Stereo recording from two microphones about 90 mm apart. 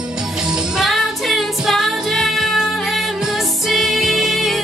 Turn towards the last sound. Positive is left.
turn(degrees=0)  # may be behind; listen again after turning